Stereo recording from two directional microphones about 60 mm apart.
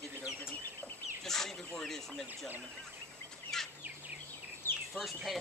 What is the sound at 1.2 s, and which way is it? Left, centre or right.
Speech, centre.